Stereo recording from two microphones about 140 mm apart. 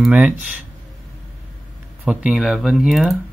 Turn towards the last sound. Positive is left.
turn(degrees=0)  # may be behind; listen again after turning